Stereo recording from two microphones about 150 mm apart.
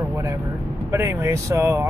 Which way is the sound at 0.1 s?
20° right (ahead or behind).